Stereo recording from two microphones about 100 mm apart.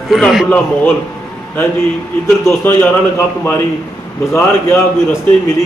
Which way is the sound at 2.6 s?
20° left (ahead or behind).